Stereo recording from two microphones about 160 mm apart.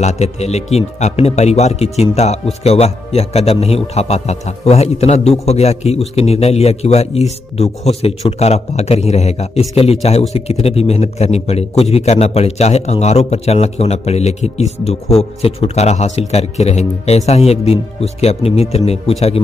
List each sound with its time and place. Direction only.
0.0 s a man's voice: 45° left (ahead or behind)